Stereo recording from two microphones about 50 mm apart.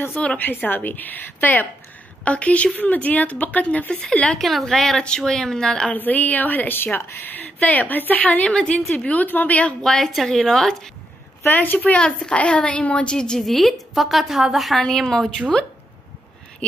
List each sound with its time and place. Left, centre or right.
0.4 s a woman's voice: left
2.2 s a woman's voice: left
4.4 s a woman's voice: centre
5.9 s a woman's voice: left
7.2 s a woman's voice: left
8.5 s a woman's voice: centre
9.8 s a woman's voice: centre
11.4 s a woman's voice: left
12.0 s a woman's voice: centre
13.4 s a woman's voice: centre
14.8 s a woman's voice: centre